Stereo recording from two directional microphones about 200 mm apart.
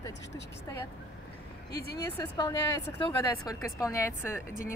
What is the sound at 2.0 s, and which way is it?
A woman's voice, 20° left (ahead or behind).